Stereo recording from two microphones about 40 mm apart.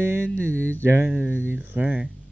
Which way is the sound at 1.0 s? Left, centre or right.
Right.